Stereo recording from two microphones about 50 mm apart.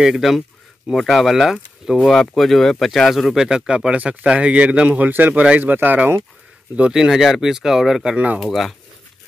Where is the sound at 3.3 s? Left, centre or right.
Centre.